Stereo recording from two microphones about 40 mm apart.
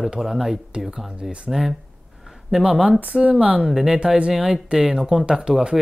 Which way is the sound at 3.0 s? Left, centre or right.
Right.